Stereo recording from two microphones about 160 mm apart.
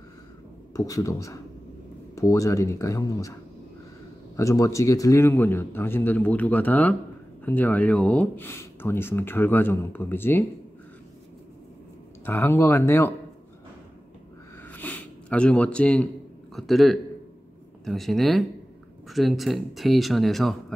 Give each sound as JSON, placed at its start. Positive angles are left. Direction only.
{"t": 0.7, "sound": "speech", "side_deg": 20}
{"t": 4.4, "sound": "speech", "side_deg": 20}
{"t": 12.3, "sound": "speech", "side_deg": 15}
{"t": 14.6, "sound": "a sound", "side_deg": 10}
{"t": 16.5, "sound": "speech", "side_deg": 0}